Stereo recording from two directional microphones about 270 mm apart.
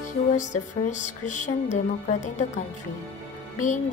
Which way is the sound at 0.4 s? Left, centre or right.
Left.